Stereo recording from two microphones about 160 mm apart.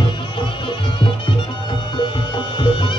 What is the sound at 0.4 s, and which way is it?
Music, 30° left (ahead or behind).